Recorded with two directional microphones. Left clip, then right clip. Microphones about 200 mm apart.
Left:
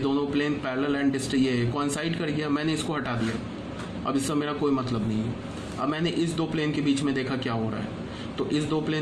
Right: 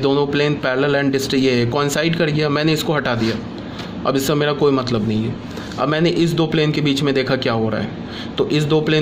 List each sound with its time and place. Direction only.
0.0 s a man's voice: 45° right (ahead or behind)